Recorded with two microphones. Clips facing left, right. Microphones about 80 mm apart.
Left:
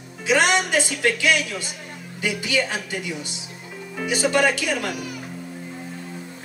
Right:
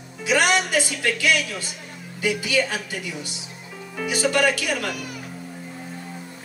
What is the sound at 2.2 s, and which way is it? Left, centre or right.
A woman's voice, left.